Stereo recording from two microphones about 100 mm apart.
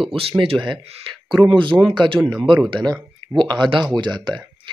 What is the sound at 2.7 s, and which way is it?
Speech, 50° right (ahead or behind).